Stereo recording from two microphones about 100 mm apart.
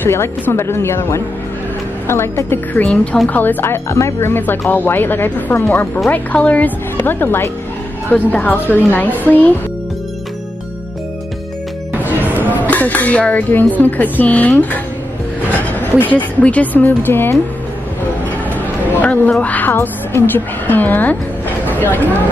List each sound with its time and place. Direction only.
0.0 s speech: 25° left (ahead or behind)
12.0 s music: 15° right (ahead or behind)
12.6 s speech: 15° left (ahead or behind)
15.8 s speech: 20° left (ahead or behind)
18.9 s quack: 15° left (ahead or behind)
19.4 s speech: 15° left (ahead or behind)
21.6 s a sound: 20° left (ahead or behind)